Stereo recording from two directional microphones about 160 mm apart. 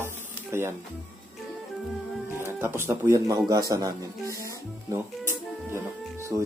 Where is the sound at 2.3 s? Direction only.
15° right (ahead or behind).